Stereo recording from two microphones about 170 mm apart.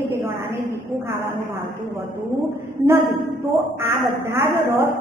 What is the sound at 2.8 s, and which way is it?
Speech, 30° right (ahead or behind).